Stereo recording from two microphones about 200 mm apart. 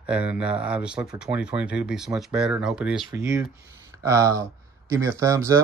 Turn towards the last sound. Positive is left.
turn(degrees=-15)  # may be behind; listen again after turning